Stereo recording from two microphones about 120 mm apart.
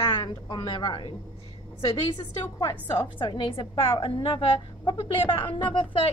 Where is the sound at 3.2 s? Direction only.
45° left (ahead or behind).